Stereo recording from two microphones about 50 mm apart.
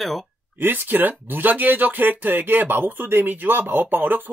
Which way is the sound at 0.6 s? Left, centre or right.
Right.